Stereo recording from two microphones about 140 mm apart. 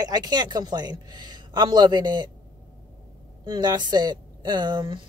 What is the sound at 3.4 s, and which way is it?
A woman's voice, 30° right (ahead or behind).